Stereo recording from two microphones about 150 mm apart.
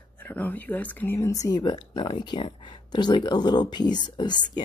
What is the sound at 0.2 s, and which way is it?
Speech, 10° left (ahead or behind).